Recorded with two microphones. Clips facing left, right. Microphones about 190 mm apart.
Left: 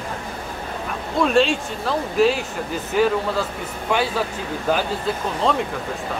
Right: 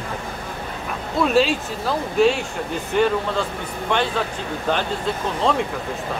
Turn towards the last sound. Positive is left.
turn(degrees=0)  # may be behind; listen again after turning